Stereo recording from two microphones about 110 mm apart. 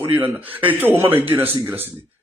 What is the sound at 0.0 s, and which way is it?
A man's voice, 20° right (ahead or behind).